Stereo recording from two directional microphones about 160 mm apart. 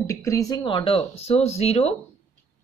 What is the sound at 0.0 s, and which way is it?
Speech, 20° left (ahead or behind).